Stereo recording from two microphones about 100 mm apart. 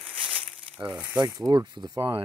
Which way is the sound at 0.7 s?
10° right (ahead or behind).